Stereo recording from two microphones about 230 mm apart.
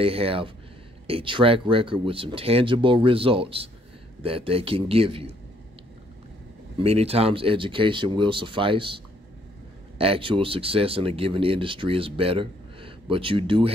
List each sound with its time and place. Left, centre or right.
0.0 s speech: right
6.8 s speech: right